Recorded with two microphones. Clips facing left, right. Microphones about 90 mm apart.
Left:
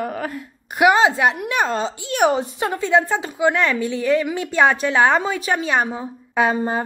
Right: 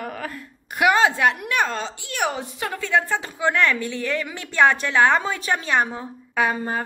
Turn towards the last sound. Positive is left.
turn(degrees=20)  # may be behind; listen again after turning